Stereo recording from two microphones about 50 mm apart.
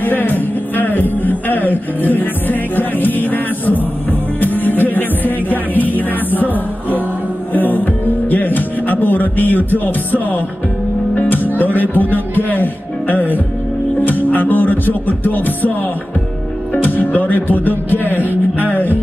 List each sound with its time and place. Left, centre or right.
0.0 s music: left
16.7 s speech: left
18.2 s music: right